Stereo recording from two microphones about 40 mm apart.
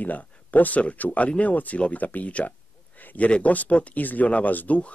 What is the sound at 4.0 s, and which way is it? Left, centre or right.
Speech, left.